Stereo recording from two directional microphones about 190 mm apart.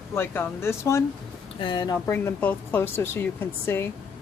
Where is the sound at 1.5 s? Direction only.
25° left (ahead or behind).